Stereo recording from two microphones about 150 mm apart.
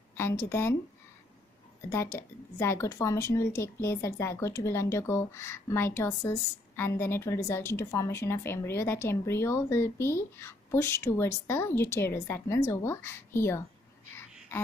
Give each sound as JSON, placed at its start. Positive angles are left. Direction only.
{"t": 0.1, "sound": "a woman's voice", "side_deg": 15}
{"t": 1.9, "sound": "a woman's voice", "side_deg": 15}
{"t": 14.5, "sound": "a sound", "side_deg": 15}